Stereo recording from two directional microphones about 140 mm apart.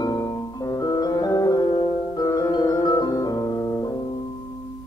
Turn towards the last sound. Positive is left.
turn(degrees=25)  # may be behind; listen again after turning